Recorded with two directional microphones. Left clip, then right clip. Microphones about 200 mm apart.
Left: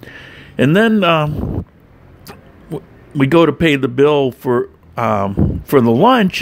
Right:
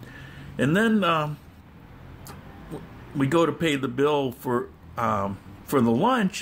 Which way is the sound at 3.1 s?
35° left (ahead or behind).